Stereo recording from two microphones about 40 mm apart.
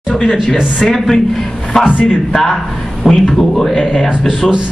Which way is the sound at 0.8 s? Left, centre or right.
Centre.